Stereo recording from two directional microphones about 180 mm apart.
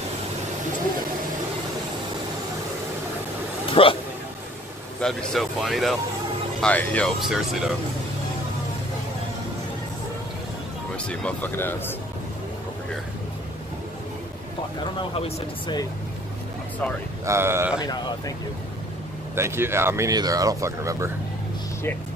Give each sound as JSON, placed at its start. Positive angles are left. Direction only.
{"t": 3.8, "sound": "speech", "side_deg": 30}
{"t": 5.0, "sound": "speech", "side_deg": 0}
{"t": 7.2, "sound": "speech", "side_deg": 0}
{"t": 11.1, "sound": "speech", "side_deg": 10}
{"t": 15.0, "sound": "speech", "side_deg": 30}
{"t": 17.3, "sound": "speech", "side_deg": -15}
{"t": 17.7, "sound": "speech", "side_deg": 25}
{"t": 19.3, "sound": "speech", "side_deg": -15}